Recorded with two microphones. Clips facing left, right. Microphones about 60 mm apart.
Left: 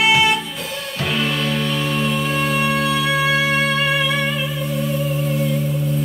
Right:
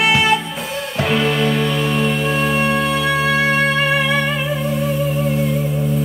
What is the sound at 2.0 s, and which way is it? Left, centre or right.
Music, right.